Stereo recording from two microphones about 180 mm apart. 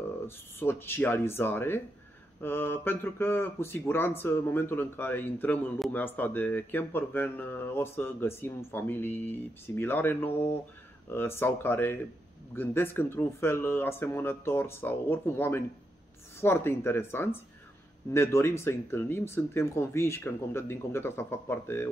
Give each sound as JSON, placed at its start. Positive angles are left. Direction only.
{"t": 0.6, "sound": "speech", "side_deg": 10}